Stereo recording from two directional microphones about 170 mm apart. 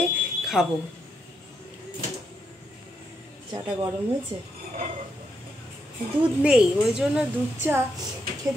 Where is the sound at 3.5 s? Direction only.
25° right (ahead or behind).